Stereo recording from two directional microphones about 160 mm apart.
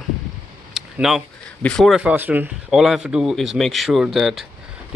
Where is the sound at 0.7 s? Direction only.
Centre (ahead or behind).